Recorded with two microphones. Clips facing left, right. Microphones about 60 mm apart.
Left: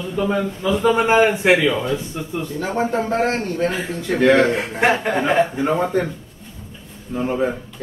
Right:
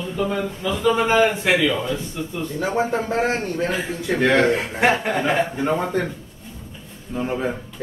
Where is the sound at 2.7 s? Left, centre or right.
Centre.